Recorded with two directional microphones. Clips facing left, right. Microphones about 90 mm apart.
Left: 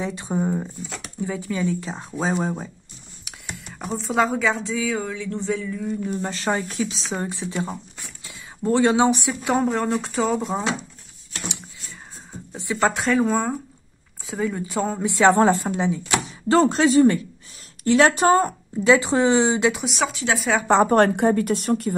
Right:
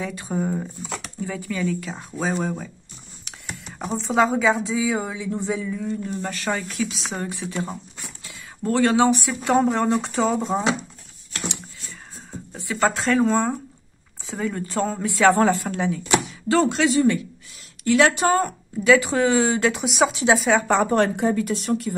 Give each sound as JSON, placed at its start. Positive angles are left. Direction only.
{"t": 0.0, "sound": "a woman's voice", "side_deg": 20}
{"t": 3.3, "sound": "speech", "side_deg": 0}
{"t": 5.9, "sound": "a woman's voice", "side_deg": 10}
{"t": 6.3, "sound": "speech", "side_deg": 30}
{"t": 9.3, "sound": "speech", "side_deg": 5}
{"t": 12.7, "sound": "a woman's voice", "side_deg": 10}
{"t": 16.4, "sound": "speech", "side_deg": 35}
{"t": 19.7, "sound": "speech", "side_deg": 0}
{"t": 20.1, "sound": "a woman's voice", "side_deg": -20}
{"t": 20.3, "sound": "speech", "side_deg": 0}
{"t": 20.9, "sound": "a woman's voice", "side_deg": 50}